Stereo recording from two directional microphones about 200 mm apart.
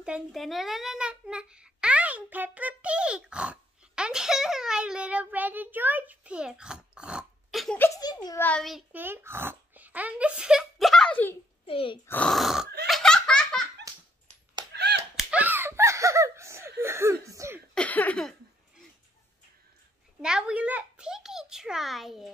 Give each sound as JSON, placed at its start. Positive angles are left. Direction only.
{"t": 0.0, "sound": "a child's voice", "side_deg": 0}
{"t": 8.5, "sound": "speech", "side_deg": 0}
{"t": 11.6, "sound": "speech", "side_deg": 25}
{"t": 12.1, "sound": "speech", "side_deg": 5}
{"t": 12.8, "sound": "laughter", "side_deg": 0}
{"t": 14.7, "sound": "a sound", "side_deg": -55}
{"t": 15.1, "sound": "laughter", "side_deg": -10}
{"t": 17.7, "sound": "a sound", "side_deg": 10}
{"t": 20.2, "sound": "a child's voice", "side_deg": -5}